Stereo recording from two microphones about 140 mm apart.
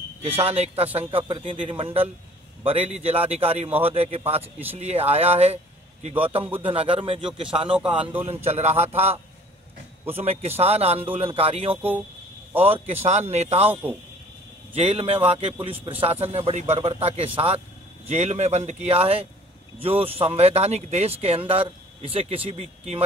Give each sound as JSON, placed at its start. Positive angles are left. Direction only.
{"t": 0.4, "sound": "speech", "side_deg": -45}
{"t": 8.0, "sound": "a man's voice", "side_deg": -10}
{"t": 8.5, "sound": "speech", "side_deg": -50}
{"t": 14.8, "sound": "speech", "side_deg": -45}